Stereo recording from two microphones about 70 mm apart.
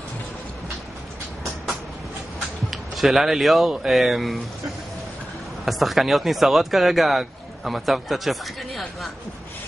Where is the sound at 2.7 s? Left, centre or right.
Centre.